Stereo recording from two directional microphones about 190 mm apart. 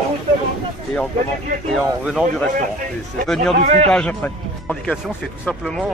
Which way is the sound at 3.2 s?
Centre (ahead or behind).